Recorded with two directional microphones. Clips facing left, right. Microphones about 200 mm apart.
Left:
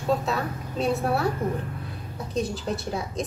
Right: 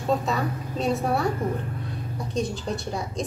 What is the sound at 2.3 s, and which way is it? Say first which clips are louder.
Speech: even; centre (ahead or behind).